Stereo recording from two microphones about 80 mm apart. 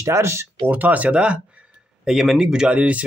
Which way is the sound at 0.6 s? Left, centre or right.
Right.